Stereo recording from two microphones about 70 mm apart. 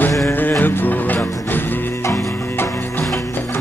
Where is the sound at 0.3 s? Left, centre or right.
Left.